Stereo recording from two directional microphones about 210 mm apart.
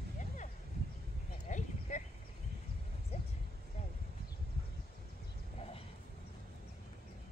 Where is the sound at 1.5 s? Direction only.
35° left (ahead or behind).